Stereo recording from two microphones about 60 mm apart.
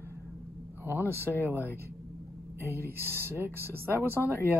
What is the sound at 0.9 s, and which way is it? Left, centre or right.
Speech, right.